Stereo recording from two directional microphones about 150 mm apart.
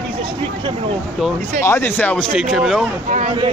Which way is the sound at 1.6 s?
15° left (ahead or behind).